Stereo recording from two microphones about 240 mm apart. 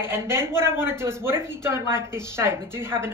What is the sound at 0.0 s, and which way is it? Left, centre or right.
A woman's voice, centre.